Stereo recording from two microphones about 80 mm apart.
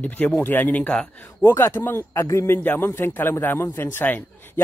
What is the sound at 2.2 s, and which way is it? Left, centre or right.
Speech, left.